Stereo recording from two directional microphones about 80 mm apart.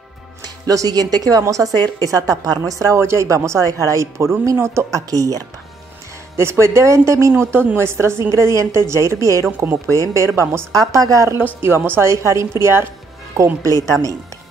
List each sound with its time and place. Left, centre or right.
0.4 s a woman's voice: right
3.0 s speech: right
6.3 s speech: right
10.7 s a woman's voice: right
11.3 s speech: right